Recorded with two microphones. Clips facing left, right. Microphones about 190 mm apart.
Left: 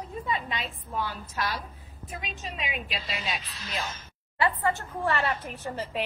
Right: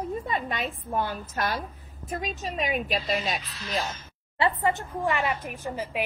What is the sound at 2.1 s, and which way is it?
A woman's voice, 40° right (ahead or behind).